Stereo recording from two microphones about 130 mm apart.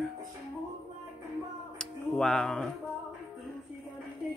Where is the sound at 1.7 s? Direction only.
5° left (ahead or behind).